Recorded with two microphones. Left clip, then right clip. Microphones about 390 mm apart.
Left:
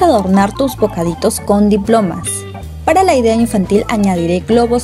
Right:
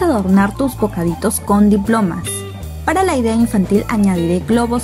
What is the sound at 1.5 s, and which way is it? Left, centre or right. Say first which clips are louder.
Speech: left 1 dB; left.